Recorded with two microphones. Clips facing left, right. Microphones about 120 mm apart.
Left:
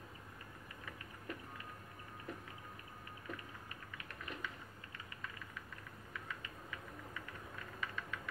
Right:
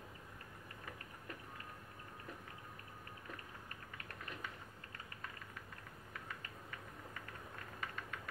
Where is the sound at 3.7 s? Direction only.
45° right (ahead or behind).